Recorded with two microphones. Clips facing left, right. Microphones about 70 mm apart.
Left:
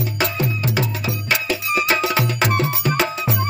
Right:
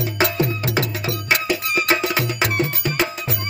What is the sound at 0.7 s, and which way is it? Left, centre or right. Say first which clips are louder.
Music: even; right.